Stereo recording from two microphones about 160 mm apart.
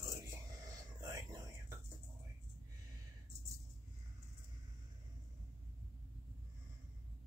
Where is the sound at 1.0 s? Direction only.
20° right (ahead or behind).